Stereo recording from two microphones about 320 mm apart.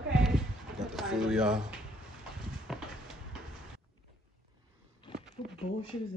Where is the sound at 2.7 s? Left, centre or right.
Centre.